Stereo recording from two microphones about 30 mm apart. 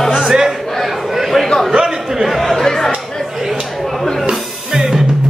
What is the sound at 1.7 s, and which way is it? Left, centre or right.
Chatter, right.